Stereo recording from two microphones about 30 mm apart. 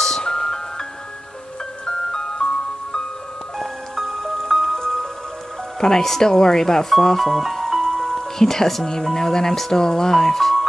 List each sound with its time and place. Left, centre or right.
0.0 s glockenspiel: left
1.9 s music: left
3.5 s music: centre
4.1 s music: centre
4.5 s music: centre
4.7 s music: centre
5.8 s speech: centre
7.8 s music: centre
8.8 s speech: centre